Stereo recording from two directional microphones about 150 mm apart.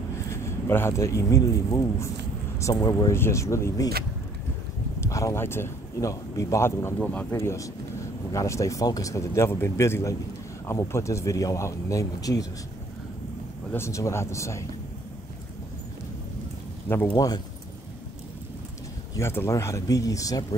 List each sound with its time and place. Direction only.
0.3 s a man's voice: 15° left (ahead or behind)
5.0 s a man's voice: 20° left (ahead or behind)
13.7 s a man's voice: 15° left (ahead or behind)
16.9 s speech: 15° left (ahead or behind)
19.1 s a man's voice: 15° left (ahead or behind)